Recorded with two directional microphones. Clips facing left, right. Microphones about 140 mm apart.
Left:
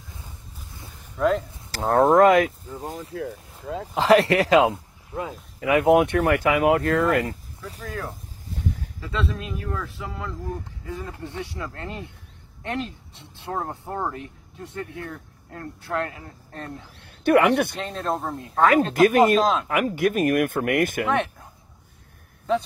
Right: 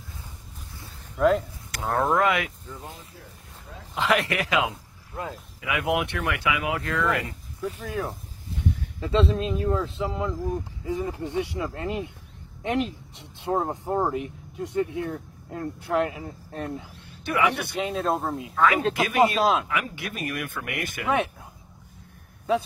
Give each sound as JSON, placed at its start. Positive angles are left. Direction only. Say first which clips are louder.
{"t": 1.1, "sound": "speech", "louder": "right 1 dB", "side_deg": 0}
{"t": 1.7, "sound": "speech", "louder": "left 7 dB", "side_deg": 35}
{"t": 3.2, "sound": "speech", "louder": "left 15 dB", "side_deg": 90}
{"t": 3.9, "sound": "speech", "louder": "left 7 dB", "side_deg": 35}
{"t": 7.8, "sound": "speech", "louder": "even", "side_deg": -15}
{"t": 8.5, "sound": "a sound", "louder": "right 1 dB", "side_deg": 45}
{"t": 9.0, "sound": "speech", "louder": "right 6 dB", "side_deg": -30}
{"t": 16.9, "sound": "speech", "louder": "left 15 dB", "side_deg": 60}
{"t": 17.7, "sound": "speech", "louder": "right 2 dB", "side_deg": -5}
{"t": 18.5, "sound": "speech", "louder": "left 4 dB", "side_deg": 45}
{"t": 19.4, "sound": "speech", "louder": "even", "side_deg": -5}
{"t": 19.7, "sound": "speech", "louder": "left 9 dB", "side_deg": 45}
{"t": 21.1, "sound": "speech", "louder": "left 1 dB", "side_deg": -10}